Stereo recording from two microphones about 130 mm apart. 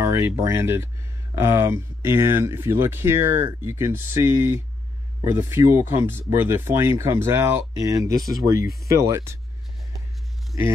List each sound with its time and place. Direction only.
0.1 s speech: 25° right (ahead or behind)
10.5 s speech: 25° right (ahead or behind)